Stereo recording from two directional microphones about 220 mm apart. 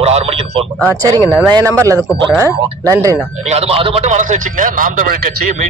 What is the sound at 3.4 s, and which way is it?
A man's voice, 30° right (ahead or behind).